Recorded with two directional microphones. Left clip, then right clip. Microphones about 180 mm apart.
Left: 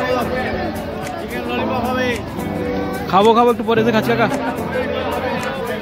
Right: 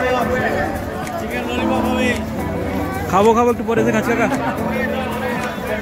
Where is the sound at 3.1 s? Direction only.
15° left (ahead or behind).